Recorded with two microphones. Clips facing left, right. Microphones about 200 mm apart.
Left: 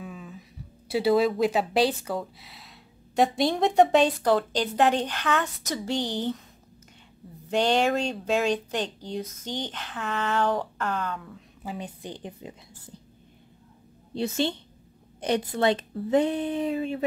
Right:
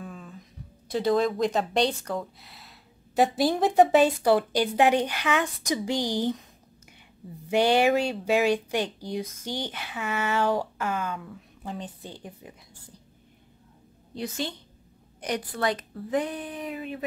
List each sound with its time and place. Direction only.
0.0 s speech: 5° left (ahead or behind); by 6.3 s 10° right (ahead or behind)
7.4 s speech: 10° right (ahead or behind)
12.0 s speech: 20° left (ahead or behind)
14.1 s speech: 25° left (ahead or behind)